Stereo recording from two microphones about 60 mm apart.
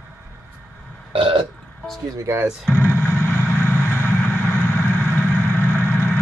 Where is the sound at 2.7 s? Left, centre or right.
Left.